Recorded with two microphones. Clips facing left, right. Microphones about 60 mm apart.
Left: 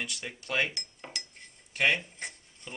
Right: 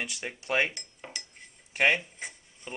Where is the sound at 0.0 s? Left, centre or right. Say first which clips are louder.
Right 2 dB; centre.